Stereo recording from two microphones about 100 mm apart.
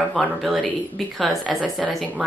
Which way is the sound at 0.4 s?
Centre (ahead or behind).